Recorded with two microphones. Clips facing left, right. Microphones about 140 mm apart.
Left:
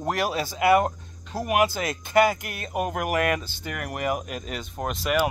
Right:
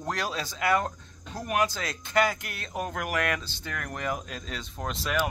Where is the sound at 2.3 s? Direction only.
50° left (ahead or behind).